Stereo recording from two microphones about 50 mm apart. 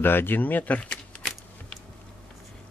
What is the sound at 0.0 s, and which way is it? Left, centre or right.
Speech, left.